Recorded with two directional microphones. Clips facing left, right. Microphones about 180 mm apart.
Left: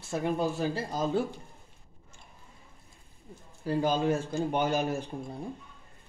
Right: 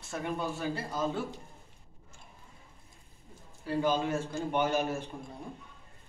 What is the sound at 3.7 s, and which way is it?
Speech, 40° left (ahead or behind).